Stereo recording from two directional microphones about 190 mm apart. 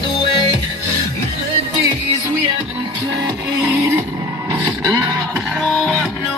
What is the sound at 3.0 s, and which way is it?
Music, 15° right (ahead or behind).